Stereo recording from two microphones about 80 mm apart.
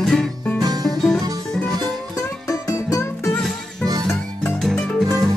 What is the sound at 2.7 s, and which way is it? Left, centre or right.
Music, left.